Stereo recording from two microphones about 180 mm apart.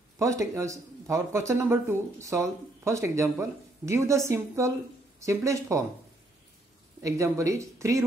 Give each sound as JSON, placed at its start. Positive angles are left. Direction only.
{"t": 0.2, "sound": "speech", "side_deg": -15}
{"t": 7.0, "sound": "speech", "side_deg": -15}